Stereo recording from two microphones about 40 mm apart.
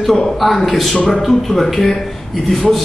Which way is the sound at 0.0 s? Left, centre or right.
Centre.